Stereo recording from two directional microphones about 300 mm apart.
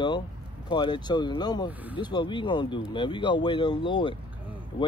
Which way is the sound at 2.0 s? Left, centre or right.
Centre.